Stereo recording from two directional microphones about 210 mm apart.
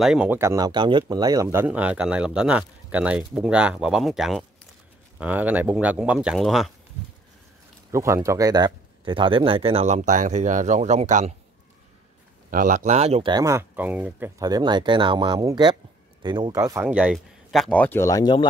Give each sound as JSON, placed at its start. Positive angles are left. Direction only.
{"t": 0.0, "sound": "speech", "side_deg": -5}
{"t": 7.9, "sound": "speech", "side_deg": -15}
{"t": 12.4, "sound": "speech", "side_deg": -40}
{"t": 14.4, "sound": "speech", "side_deg": -20}
{"t": 16.8, "sound": "speech", "side_deg": -5}